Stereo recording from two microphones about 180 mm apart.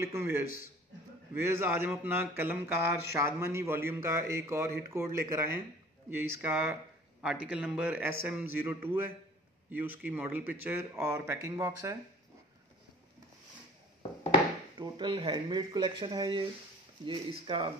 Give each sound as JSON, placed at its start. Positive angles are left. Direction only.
{"t": 0.0, "sound": "speech", "side_deg": -15}
{"t": 1.5, "sound": "speech", "side_deg": -10}
{"t": 14.8, "sound": "speech", "side_deg": -25}